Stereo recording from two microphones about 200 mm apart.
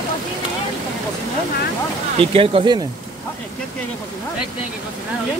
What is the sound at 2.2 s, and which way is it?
Speech, 30° right (ahead or behind).